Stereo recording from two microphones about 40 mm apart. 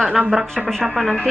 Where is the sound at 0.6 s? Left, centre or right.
Centre.